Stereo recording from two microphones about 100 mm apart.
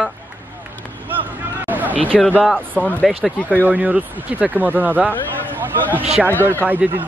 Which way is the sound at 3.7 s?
15° right (ahead or behind).